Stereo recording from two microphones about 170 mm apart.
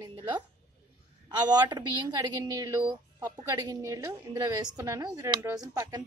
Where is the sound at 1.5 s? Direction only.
25° right (ahead or behind).